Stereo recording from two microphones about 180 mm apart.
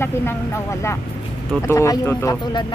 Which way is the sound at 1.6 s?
15° left (ahead or behind).